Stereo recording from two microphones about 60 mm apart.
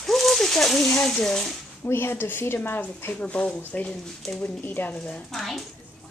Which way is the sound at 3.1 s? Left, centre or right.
Centre.